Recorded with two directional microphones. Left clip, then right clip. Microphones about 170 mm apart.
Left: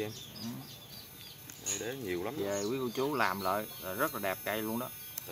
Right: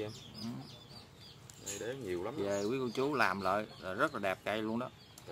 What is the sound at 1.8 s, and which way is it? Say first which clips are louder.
Speech: even; 35° left (ahead or behind).